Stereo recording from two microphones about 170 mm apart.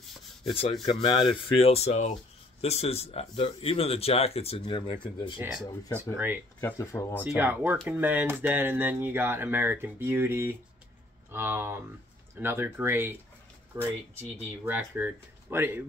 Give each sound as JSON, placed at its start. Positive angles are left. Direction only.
{"t": 0.5, "sound": "speech", "side_deg": 35}
{"t": 5.4, "sound": "speech", "side_deg": -10}
{"t": 6.6, "sound": "speech", "side_deg": 15}
{"t": 7.2, "sound": "speech", "side_deg": -10}